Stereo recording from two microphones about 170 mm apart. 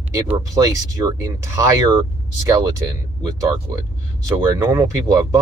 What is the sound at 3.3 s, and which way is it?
Speech, 20° right (ahead or behind).